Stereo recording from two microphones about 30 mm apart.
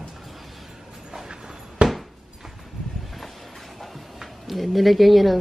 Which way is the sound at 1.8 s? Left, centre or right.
Right.